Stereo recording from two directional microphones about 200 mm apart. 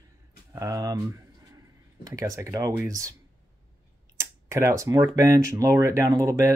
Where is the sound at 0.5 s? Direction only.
15° right (ahead or behind).